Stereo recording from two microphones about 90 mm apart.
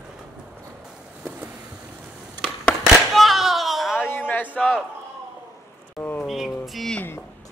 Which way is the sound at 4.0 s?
20° left (ahead or behind).